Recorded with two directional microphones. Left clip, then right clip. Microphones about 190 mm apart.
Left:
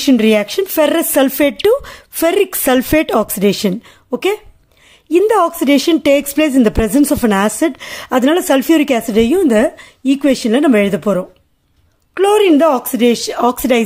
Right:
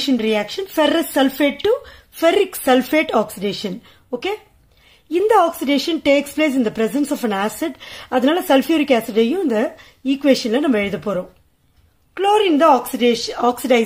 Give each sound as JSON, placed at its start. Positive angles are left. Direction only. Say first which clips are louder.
{"t": 0.0, "sound": "a woman's voice", "louder": "left 7 dB", "side_deg": 55}